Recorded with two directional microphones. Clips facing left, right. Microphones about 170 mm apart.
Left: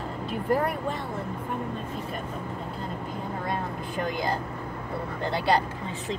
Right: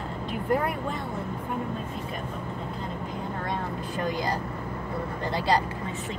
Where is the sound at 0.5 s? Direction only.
Centre (ahead or behind).